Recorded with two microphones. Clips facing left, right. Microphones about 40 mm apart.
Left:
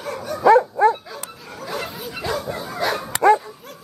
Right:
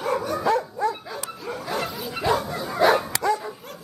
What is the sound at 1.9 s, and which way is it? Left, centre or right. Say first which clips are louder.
Bow-wow: even; centre.